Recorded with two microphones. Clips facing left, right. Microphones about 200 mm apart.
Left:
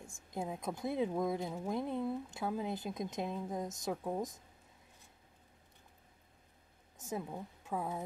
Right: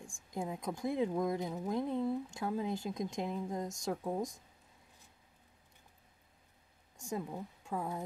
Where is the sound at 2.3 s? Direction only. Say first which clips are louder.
Right 1 dB; 5° left (ahead or behind).